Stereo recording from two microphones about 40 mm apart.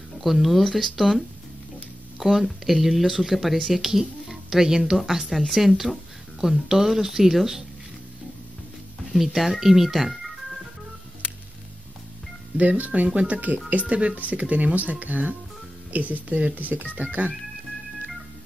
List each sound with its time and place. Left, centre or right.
0.2 s speech: centre
2.1 s speech: centre
6.4 s speech: centre
9.1 s speech: centre
12.5 s speech: right
14.1 s speech: right